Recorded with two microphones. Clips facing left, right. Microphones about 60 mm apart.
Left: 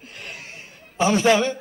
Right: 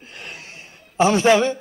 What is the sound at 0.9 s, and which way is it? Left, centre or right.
Speech, right.